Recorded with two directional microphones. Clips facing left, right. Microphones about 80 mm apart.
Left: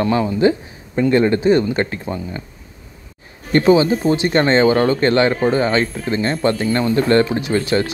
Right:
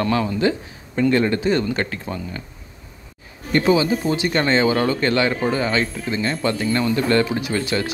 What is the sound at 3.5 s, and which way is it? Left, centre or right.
Speech, left.